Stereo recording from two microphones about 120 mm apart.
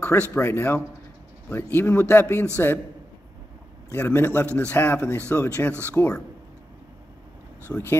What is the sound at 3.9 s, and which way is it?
Speech, 20° left (ahead or behind).